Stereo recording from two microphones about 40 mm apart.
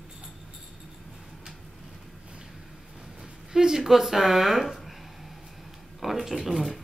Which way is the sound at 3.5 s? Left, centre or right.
Centre.